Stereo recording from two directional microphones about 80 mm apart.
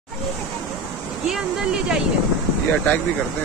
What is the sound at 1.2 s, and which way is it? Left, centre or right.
Speech, centre.